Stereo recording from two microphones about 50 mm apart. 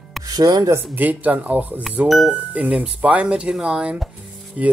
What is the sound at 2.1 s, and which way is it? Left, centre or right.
Speech, centre.